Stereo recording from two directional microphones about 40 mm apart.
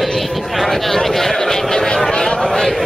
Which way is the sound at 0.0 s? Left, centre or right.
Centre.